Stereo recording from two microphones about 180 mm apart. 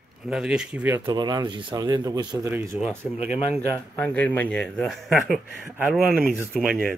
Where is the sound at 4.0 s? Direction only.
10° left (ahead or behind).